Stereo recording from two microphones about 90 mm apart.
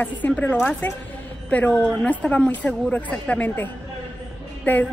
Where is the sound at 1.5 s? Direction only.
15° left (ahead or behind).